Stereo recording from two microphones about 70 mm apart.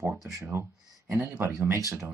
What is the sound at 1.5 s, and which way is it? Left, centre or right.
Speech, right.